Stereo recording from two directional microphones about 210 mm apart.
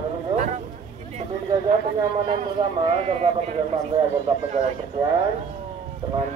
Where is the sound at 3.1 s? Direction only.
30° right (ahead or behind).